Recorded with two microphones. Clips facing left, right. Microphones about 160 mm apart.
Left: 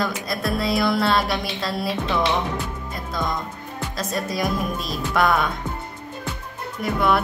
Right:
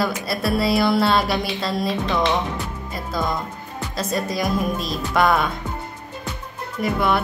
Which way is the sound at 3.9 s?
Centre (ahead or behind).